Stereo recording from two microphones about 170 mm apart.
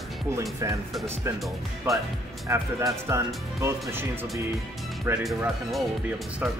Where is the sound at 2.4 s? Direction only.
15° right (ahead or behind).